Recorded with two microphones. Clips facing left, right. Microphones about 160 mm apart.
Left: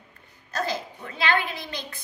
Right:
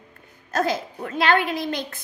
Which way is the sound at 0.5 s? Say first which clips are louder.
Right 6 dB; 50° right (ahead or behind).